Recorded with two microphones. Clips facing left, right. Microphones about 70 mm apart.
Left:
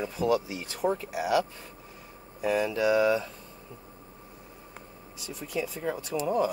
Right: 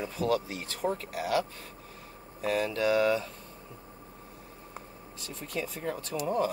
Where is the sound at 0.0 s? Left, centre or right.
Centre.